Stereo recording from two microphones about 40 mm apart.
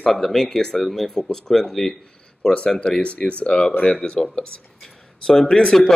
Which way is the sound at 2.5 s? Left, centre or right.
Left.